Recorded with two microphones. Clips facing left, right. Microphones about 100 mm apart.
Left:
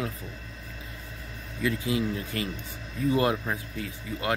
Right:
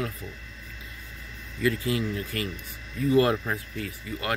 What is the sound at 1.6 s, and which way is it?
Speech, 20° left (ahead or behind).